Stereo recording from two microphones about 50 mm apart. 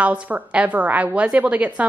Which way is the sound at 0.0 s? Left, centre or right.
Right.